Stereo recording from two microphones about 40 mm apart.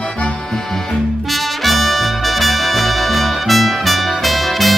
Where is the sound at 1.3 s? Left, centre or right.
Centre.